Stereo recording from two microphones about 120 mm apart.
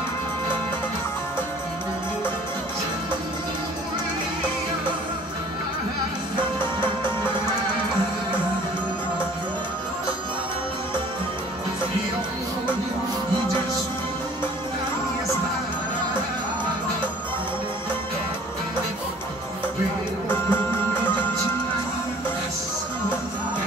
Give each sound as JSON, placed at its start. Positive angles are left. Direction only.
{"t": 20.2, "sound": "music", "side_deg": 20}